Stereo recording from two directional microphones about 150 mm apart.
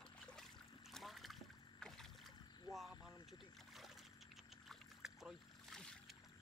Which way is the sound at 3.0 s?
25° left (ahead or behind).